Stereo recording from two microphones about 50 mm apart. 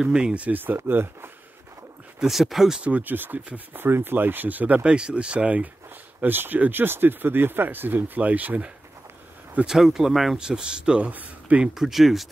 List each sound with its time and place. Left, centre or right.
0.0 s speech: centre
0.8 s speech: right
2.1 s speech: centre
2.8 s speech: right
4.9 s speech: centre
6.2 s speech: right
9.7 s a man's voice: centre; by 11.7 s right
11.7 s speech: centre